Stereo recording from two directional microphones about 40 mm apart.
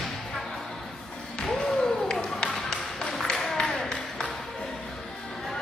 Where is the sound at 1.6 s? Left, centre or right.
Centre.